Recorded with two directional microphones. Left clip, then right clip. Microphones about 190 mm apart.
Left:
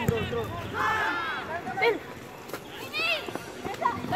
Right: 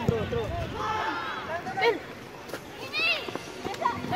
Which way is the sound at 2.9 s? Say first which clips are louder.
Right 1 dB; 20° left (ahead or behind).